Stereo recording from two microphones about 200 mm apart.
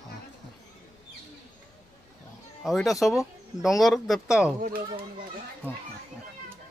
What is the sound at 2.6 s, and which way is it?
Speech, centre (ahead or behind).